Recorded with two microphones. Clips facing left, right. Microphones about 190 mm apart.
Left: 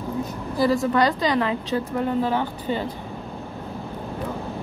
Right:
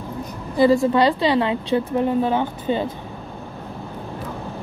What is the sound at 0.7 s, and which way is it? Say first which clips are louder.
A woman's voice: right 4 dB; 30° right (ahead or behind).